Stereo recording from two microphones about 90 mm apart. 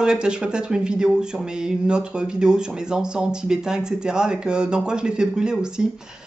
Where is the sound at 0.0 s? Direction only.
10° right (ahead or behind).